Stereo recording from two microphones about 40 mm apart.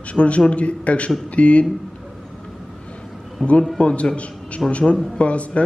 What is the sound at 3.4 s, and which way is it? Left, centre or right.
Speech, centre.